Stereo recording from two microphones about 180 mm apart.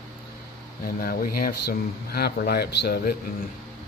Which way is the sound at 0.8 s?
55° left (ahead or behind).